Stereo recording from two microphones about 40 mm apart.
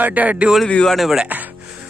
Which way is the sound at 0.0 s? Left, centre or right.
Right.